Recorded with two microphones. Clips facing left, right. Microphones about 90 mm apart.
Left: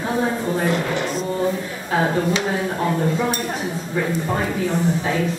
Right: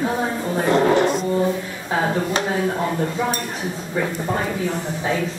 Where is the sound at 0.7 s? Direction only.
35° right (ahead or behind).